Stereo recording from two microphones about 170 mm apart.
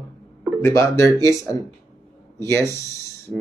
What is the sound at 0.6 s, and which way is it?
Speech, 15° left (ahead or behind).